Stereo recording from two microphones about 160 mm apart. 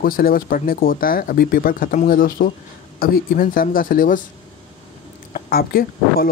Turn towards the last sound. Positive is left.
turn(degrees=65)  # may be behind; listen again after turning